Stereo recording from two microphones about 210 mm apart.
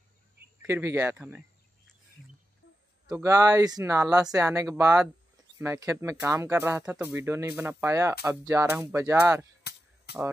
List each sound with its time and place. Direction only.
0.6 s speech: 10° right (ahead or behind)
3.1 s speech: 15° right (ahead or behind)
9.6 s a sound: 50° left (ahead or behind)